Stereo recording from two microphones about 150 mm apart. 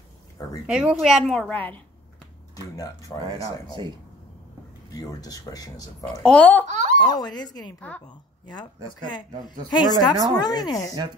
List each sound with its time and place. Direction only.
0.7 s a woman's voice: 5° right (ahead or behind); by 1.8 s 10° left (ahead or behind)
2.5 s speech: 20° left (ahead or behind)
4.9 s speech: 25° left (ahead or behind)
6.0 s speech: 5° left (ahead or behind)
6.7 s speech: 55° right (ahead or behind)
7.0 s a woman's voice: 30° left (ahead or behind)
9.7 s speech: 30° left (ahead or behind)